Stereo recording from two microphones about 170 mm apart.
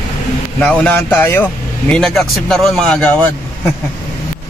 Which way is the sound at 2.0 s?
Centre (ahead or behind).